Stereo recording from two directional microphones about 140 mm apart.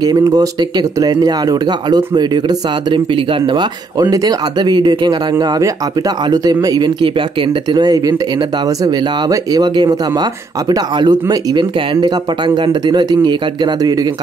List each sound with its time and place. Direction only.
0.0 s speech: 30° right (ahead or behind)